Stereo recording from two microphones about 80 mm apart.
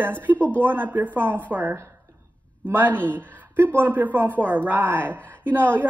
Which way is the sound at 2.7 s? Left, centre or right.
Right.